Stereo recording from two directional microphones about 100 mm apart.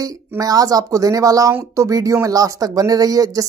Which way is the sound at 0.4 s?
35° right (ahead or behind).